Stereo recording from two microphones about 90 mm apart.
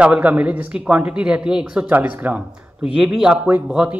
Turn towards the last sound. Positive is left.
turn(degrees=-10)  # may be behind; listen again after turning